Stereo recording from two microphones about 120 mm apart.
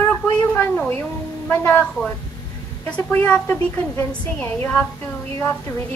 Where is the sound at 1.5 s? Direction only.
15° left (ahead or behind).